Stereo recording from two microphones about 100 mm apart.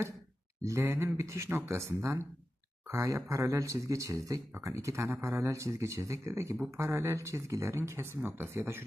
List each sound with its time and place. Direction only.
0.7 s speech: 30° right (ahead or behind)